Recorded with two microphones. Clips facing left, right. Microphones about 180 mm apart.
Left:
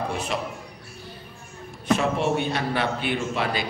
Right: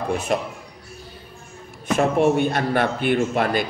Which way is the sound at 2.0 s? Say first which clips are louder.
Right 10 dB; 50° right (ahead or behind).